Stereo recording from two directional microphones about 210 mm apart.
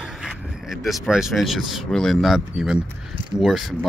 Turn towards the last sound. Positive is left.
turn(degrees=0)  # may be behind; listen again after turning